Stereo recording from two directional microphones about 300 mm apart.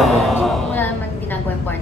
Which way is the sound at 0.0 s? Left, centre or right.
Centre.